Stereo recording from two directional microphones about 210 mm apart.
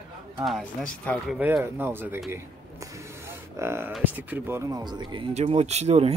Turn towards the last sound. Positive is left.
turn(degrees=-30)  # may be behind; listen again after turning